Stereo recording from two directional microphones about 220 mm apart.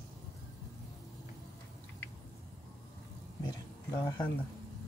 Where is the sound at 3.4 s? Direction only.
15° left (ahead or behind).